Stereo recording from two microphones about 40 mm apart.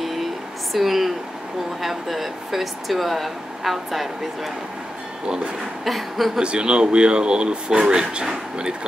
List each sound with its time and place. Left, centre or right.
0.0 s a sound: centre
0.7 s speech: centre
5.9 s speech: centre
6.4 s speech: right